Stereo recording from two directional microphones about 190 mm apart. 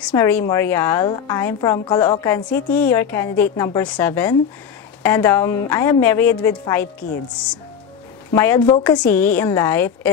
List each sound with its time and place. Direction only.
0.1 s a woman's voice: 10° left (ahead or behind)
8.8 s a woman's voice: 5° left (ahead or behind)